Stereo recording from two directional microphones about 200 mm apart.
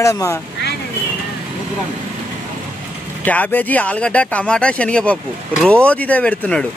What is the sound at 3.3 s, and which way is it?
Speech, 10° left (ahead or behind).